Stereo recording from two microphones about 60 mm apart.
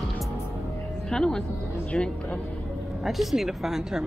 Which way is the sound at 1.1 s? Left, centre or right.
Centre.